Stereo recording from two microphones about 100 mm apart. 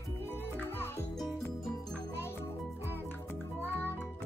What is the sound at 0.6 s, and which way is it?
Music, 25° left (ahead or behind).